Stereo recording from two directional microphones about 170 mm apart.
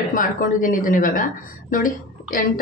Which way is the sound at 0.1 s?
55° left (ahead or behind).